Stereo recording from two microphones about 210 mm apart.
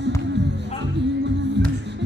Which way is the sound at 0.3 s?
55° right (ahead or behind).